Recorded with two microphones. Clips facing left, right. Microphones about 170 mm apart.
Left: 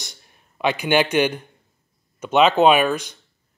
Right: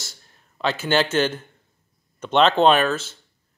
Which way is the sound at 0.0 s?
15° left (ahead or behind).